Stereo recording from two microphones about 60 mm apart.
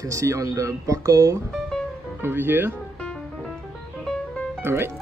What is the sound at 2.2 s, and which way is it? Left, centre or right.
Speech, right.